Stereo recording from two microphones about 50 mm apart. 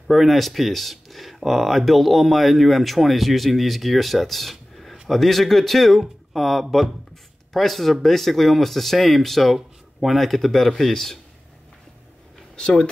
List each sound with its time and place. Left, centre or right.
0.1 s a man's voice: centre
12.5 s speech: centre